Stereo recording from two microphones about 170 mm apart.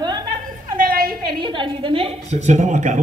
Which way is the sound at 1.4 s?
30° right (ahead or behind).